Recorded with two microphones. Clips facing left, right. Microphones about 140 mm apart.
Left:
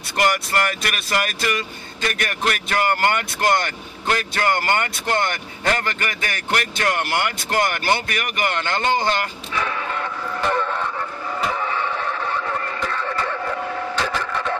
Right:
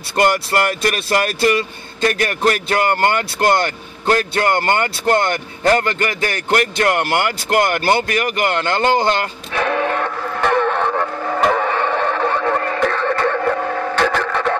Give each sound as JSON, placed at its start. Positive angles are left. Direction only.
{"t": 0.1, "sound": "a man's voice", "side_deg": -35}
{"t": 9.5, "sound": "music", "side_deg": -65}